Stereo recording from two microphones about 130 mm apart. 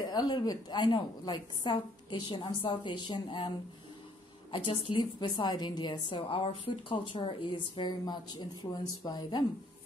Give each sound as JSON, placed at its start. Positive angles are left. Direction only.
{"t": 0.1, "sound": "a woman's voice", "side_deg": 35}